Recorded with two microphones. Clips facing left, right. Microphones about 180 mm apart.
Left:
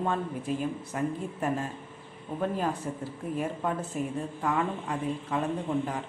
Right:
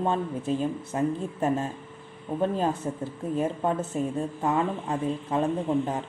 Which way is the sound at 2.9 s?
30° right (ahead or behind).